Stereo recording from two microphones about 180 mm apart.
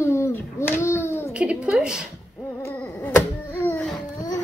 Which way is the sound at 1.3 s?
5° right (ahead or behind).